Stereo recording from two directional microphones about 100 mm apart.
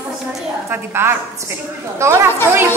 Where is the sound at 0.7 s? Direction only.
25° right (ahead or behind).